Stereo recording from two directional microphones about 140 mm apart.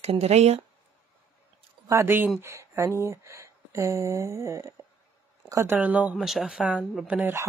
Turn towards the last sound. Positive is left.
turn(degrees=-15)  # may be behind; listen again after turning